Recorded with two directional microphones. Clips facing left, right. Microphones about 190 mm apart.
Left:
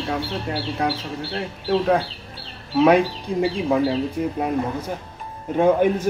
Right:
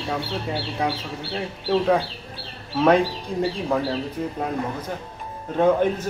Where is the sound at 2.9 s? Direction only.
15° left (ahead or behind).